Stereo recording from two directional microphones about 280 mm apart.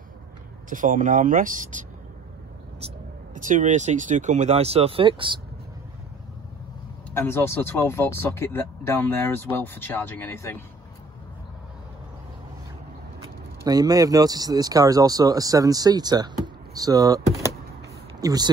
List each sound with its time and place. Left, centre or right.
0.7 s speech: right
3.3 s speech: right
7.1 s speech: centre
13.7 s speech: centre